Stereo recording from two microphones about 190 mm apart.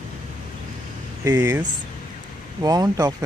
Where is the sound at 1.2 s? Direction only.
15° right (ahead or behind).